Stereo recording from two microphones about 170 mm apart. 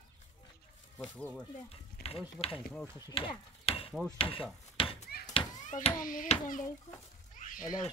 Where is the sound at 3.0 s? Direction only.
30° left (ahead or behind).